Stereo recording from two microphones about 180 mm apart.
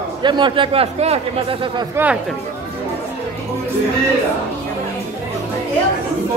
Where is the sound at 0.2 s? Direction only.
25° right (ahead or behind).